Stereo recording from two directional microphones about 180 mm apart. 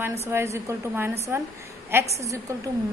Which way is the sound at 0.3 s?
15° right (ahead or behind).